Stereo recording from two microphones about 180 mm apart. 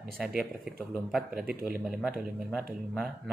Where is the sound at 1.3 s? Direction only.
55° right (ahead or behind).